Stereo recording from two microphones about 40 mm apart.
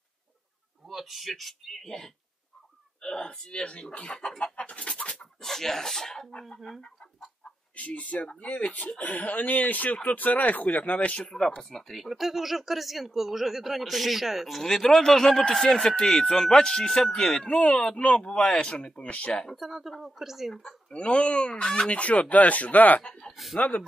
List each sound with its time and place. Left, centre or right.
0.8 s speech: centre
3.0 s speech: centre
4.4 s chicken: left
5.4 s speech: centre
7.7 s speech: left
11.2 s speech: centre
12.1 s speech: centre
14.6 s speech: centre
17.5 s speech: left
19.5 s speech: centre
20.9 s speech: left
23.3 s speech: centre